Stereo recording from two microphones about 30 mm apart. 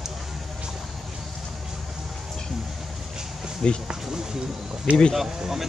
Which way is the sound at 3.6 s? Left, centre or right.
Left.